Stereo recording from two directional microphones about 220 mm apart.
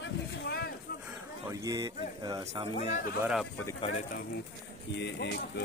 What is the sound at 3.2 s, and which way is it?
Speech, 5° right (ahead or behind).